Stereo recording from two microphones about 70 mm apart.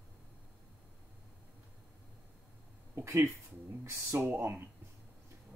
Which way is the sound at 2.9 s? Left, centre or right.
Right.